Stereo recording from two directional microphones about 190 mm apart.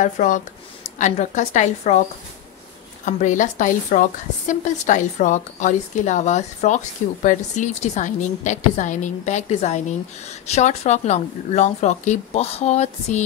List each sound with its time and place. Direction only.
0.0 s a woman's voice: 40° left (ahead or behind)
3.1 s a woman's voice: 40° left (ahead or behind)